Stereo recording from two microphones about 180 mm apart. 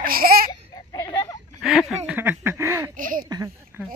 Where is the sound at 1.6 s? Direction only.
Centre (ahead or behind).